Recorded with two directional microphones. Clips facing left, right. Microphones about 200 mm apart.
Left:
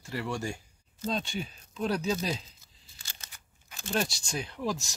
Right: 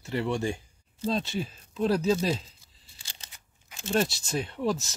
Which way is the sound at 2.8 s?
30° right (ahead or behind).